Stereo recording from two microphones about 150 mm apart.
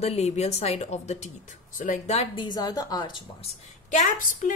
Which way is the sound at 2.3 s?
30° left (ahead or behind).